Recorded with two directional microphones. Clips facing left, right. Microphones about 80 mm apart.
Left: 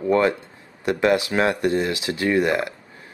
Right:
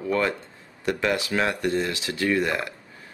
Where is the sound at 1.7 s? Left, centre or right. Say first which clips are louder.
Left 4 dB; centre.